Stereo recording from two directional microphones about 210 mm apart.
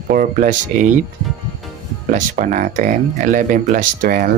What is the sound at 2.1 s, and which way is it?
Speech, 40° right (ahead or behind).